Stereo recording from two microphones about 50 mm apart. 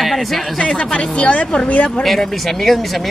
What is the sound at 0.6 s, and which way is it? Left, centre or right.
A woman's voice, centre.